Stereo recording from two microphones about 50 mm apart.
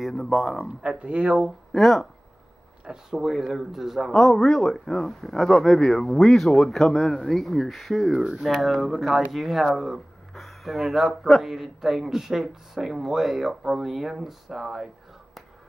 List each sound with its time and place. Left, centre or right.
0.0 s speech: centre
0.8 s speech: right
1.7 s speech: centre
2.8 s speech: centre
3.2 s speech: centre